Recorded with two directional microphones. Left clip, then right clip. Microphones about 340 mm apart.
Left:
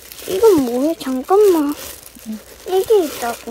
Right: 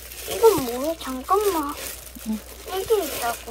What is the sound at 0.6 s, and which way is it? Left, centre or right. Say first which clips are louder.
Speech: left 8 dB; left.